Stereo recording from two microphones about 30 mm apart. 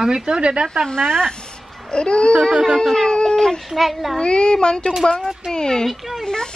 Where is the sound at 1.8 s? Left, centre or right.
Left.